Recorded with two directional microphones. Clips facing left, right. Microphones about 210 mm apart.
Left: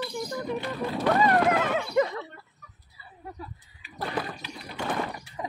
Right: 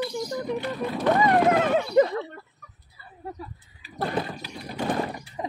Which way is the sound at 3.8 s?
40° right (ahead or behind).